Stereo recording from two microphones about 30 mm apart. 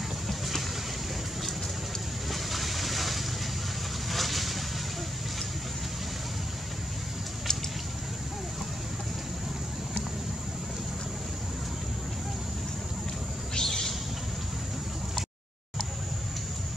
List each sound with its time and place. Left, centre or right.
0.3 s boat: centre
2.3 s vehicle: centre
4.1 s boat: centre
13.6 s bird: centre